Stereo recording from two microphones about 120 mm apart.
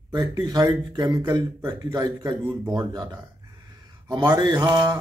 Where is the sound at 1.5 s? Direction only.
20° right (ahead or behind).